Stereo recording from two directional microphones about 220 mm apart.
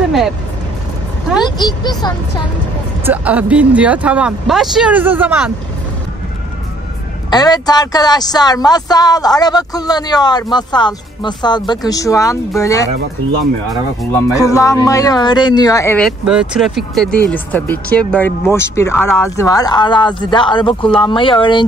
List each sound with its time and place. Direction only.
1.4 s speech: 20° left (ahead or behind)
3.1 s speech: 5° right (ahead or behind)
7.2 s speech: 20° left (ahead or behind)
14.1 s speech: 15° left (ahead or behind)
16.1 s speech: 5° right (ahead or behind); by 21.6 s 20° left (ahead or behind)